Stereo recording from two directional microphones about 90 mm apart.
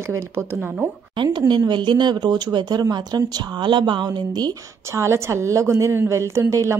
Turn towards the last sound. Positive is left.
turn(degrees=-35)  # may be behind; listen again after turning